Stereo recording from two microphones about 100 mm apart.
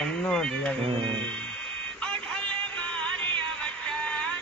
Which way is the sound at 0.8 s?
55° right (ahead or behind).